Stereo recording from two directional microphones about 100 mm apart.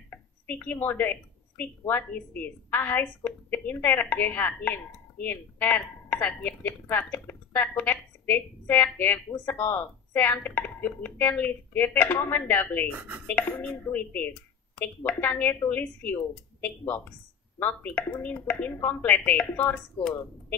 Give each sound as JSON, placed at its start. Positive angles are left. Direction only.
{"t": 0.1, "sound": "a woman's voice", "side_deg": 15}
{"t": 12.9, "sound": "speech", "side_deg": -15}
{"t": 13.3, "sound": "a woman's voice", "side_deg": 15}